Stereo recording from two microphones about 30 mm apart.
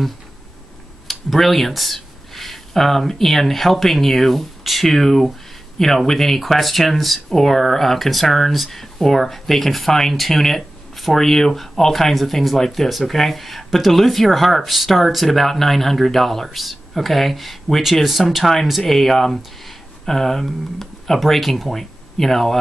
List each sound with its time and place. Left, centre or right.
1.0 s speech: centre
12.8 s speech: centre